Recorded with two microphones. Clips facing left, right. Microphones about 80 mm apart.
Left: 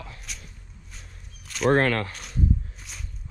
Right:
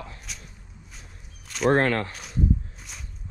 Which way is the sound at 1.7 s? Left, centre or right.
Right.